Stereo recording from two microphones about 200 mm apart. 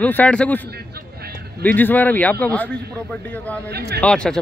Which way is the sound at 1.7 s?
10° left (ahead or behind).